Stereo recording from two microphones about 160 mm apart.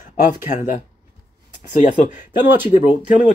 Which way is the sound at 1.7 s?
45° left (ahead or behind).